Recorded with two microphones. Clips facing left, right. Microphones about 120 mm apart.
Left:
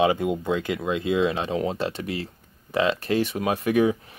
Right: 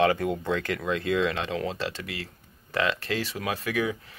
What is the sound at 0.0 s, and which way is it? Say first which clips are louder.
Speech: left 2 dB; 15° left (ahead or behind).